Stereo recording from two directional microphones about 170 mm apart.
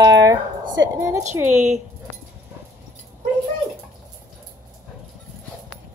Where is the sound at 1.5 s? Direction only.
45° right (ahead or behind).